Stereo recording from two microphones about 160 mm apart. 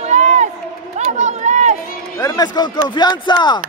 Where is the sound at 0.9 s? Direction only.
45° right (ahead or behind).